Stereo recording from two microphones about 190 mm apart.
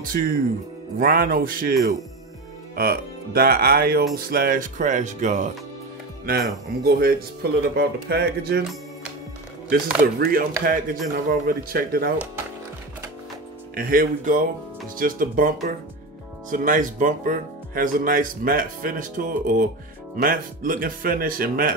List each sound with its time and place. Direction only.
0.0 s speech: 45° right (ahead or behind)
6.8 s speech: 55° right (ahead or behind)
9.7 s speech: 50° right (ahead or behind)
13.7 s speech: 50° right (ahead or behind)